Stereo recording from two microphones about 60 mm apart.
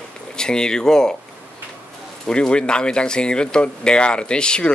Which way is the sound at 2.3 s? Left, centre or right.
Centre.